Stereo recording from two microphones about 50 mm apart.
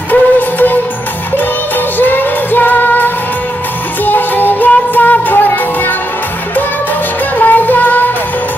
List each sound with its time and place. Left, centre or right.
0.1 s music: left
2.0 s music: left
7.4 s music: left